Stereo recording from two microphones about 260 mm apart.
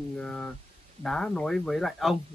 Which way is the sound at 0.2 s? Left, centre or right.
Centre.